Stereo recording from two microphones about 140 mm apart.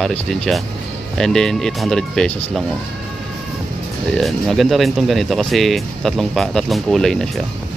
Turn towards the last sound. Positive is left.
turn(degrees=5)  # may be behind; listen again after turning